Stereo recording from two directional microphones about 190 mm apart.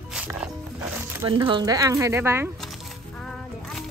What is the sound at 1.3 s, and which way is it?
Speech, 25° right (ahead or behind).